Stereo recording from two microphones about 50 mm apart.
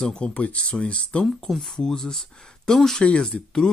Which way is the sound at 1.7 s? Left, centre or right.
Centre.